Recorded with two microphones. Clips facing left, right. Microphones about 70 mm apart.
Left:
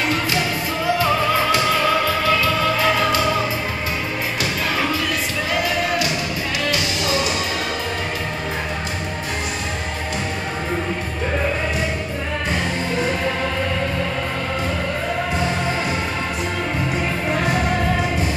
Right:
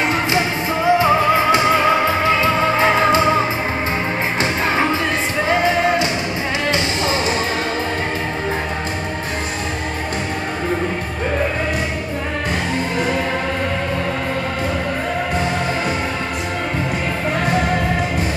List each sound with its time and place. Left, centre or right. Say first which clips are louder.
0.1 s music: right 3 dB; right